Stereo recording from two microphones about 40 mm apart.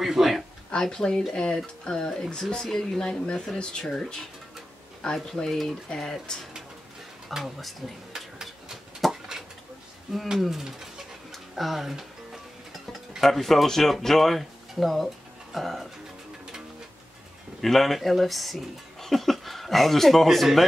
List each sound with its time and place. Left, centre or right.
0.0 s a sound: centre
0.7 s speech: centre
3.0 s speech: left
3.8 s speech: centre
7.3 s speech: centre
8.1 s a sound: centre
9.0 s a sound: centre
10.3 s speech: centre
11.3 s music: centre
13.2 s speech: centre
17.6 s speech: centre